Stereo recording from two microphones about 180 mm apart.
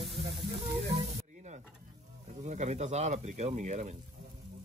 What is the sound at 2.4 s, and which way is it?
Speech, 40° right (ahead or behind).